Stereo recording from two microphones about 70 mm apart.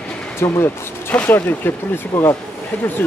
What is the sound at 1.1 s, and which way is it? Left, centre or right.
Speech, left.